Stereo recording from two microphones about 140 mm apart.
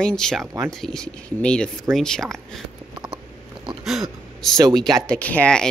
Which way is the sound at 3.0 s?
35° right (ahead or behind).